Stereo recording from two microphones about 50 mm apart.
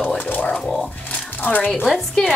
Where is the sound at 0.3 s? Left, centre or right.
Left.